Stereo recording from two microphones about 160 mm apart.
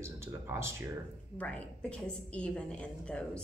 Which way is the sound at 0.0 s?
15° right (ahead or behind).